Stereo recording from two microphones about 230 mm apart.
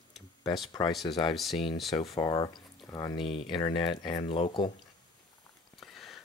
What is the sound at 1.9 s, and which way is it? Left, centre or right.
Speech, left.